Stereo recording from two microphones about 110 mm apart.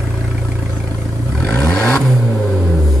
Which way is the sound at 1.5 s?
5° left (ahead or behind).